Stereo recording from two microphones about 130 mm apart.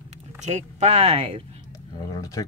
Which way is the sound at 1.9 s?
30° left (ahead or behind).